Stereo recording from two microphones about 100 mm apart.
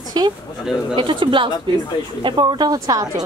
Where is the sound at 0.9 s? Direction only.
55° right (ahead or behind).